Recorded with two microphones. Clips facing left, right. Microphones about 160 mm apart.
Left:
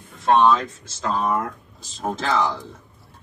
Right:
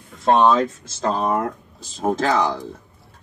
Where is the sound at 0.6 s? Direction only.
40° right (ahead or behind).